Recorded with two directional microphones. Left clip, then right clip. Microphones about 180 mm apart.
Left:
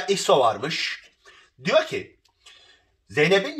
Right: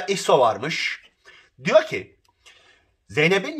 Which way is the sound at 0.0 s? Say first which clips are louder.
Right 1 dB; 20° right (ahead or behind).